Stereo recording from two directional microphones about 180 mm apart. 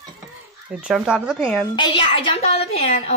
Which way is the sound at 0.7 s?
5° right (ahead or behind).